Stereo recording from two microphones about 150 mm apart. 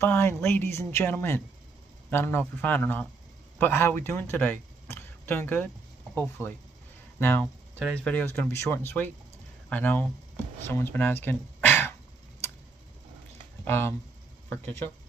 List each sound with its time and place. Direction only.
0.0 s speech: 15° left (ahead or behind)
13.7 s speech: 15° left (ahead or behind)